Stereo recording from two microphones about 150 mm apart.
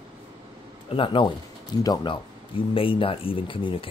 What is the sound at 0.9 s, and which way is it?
Speech, 35° left (ahead or behind).